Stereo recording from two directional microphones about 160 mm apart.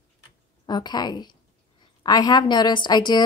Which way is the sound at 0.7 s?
25° left (ahead or behind).